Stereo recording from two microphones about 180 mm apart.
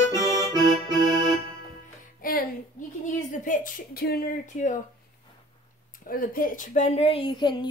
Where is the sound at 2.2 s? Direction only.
55° left (ahead or behind).